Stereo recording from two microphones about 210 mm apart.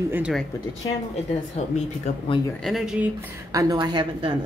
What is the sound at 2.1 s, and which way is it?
Speech, 30° left (ahead or behind).